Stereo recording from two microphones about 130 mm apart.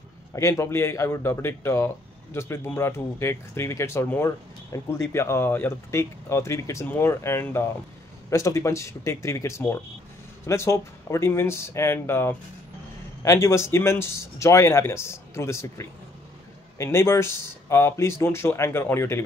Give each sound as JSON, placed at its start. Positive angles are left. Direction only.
{"t": 0.3, "sound": "speech", "side_deg": 25}
{"t": 16.7, "sound": "speech", "side_deg": 20}